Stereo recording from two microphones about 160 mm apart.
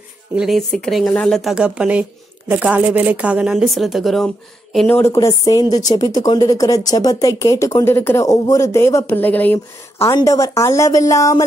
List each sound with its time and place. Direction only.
0.4 s speech: centre (ahead or behind)
4.7 s a woman's voice: 10° left (ahead or behind)